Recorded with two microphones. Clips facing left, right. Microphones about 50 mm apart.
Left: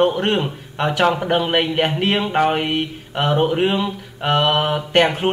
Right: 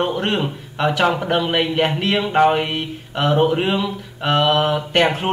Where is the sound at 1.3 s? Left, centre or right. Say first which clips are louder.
Even; centre.